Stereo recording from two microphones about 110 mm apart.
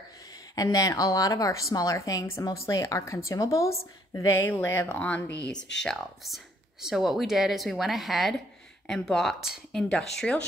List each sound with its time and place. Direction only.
0.3 s a woman's voice: 35° left (ahead or behind); by 10.4 s 10° left (ahead or behind)